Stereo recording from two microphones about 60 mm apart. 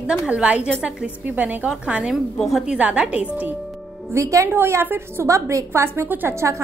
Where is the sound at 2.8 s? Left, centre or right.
Right.